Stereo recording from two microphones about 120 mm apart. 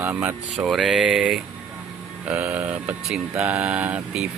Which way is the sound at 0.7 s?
Centre (ahead or behind).